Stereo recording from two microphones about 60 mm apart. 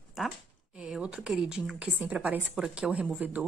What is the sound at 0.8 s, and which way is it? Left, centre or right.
A woman's voice, centre.